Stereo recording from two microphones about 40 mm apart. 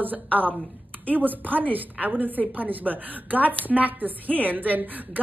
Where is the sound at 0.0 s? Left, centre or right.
Right.